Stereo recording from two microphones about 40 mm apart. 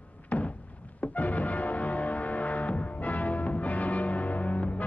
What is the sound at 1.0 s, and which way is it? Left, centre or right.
Music, left.